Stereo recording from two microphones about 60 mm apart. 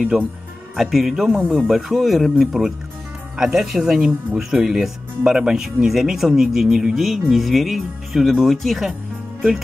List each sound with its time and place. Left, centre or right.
0.1 s speech: centre